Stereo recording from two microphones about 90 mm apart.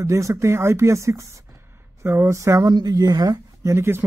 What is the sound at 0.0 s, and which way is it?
Speech, 35° right (ahead or behind).